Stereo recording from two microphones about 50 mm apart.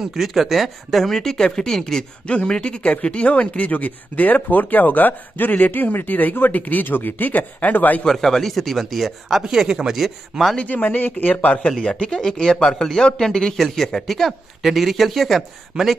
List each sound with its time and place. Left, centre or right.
0.0 s speech: centre; by 8.0 s left
8.0 s speech: centre
10.7 s speech: left
11.8 s a man's voice: centre